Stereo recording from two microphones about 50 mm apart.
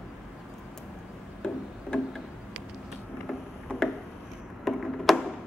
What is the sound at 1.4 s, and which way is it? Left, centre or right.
Music, centre.